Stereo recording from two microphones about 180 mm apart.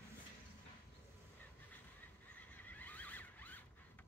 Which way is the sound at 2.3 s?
10° left (ahead or behind).